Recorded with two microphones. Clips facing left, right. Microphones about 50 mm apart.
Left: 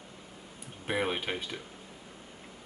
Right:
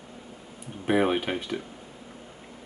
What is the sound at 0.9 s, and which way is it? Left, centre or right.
Speech, centre.